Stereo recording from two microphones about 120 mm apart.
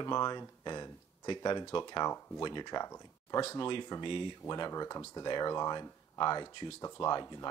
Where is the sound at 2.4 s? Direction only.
35° left (ahead or behind).